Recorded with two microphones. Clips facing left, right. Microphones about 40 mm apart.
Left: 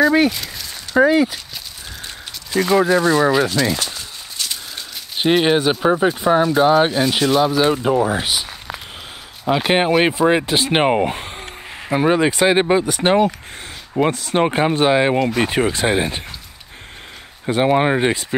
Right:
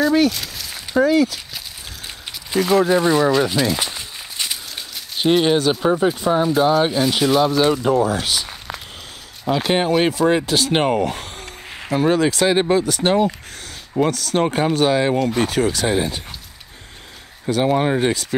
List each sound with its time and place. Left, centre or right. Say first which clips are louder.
0.3 s speech: even; centre
0.9 s speech: left 2 dB; left
2.5 s speech: left 1 dB; centre
2.9 s speech: left 1 dB; centre
3.2 s speech: left 1 dB; centre
3.7 s walk: right 1 dB; centre
5.1 s speech: left 1 dB; centre
7.6 s speech: even; centre
8.5 s a sound: left 1 dB; centre
9.5 s speech: left 2 dB; left
17.5 s speech: left 2 dB; left